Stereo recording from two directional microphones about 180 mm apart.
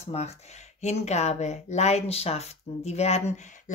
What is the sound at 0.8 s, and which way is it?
Speech, 40° left (ahead or behind).